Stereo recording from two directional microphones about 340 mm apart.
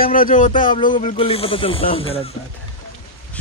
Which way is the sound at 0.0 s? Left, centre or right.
Left.